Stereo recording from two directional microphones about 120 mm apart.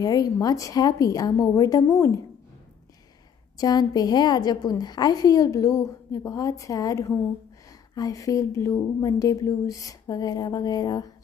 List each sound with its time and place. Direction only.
0.0 s speech: 30° left (ahead or behind)
3.5 s a woman's voice: 35° left (ahead or behind)